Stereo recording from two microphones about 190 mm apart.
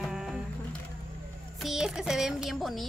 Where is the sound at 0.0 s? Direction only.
Centre (ahead or behind).